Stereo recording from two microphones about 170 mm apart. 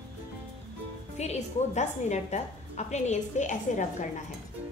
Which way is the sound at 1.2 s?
40° left (ahead or behind).